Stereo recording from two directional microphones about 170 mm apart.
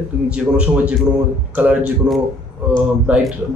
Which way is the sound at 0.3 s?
5° right (ahead or behind).